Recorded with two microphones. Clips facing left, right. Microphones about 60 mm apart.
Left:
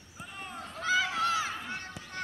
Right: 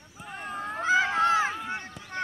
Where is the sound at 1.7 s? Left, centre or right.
Right.